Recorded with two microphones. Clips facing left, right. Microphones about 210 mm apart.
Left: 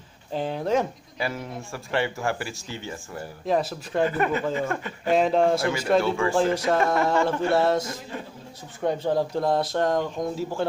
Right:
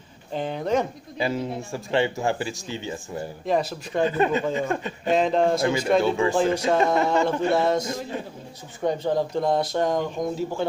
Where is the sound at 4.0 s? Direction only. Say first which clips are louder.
Right 2 dB; 20° right (ahead or behind).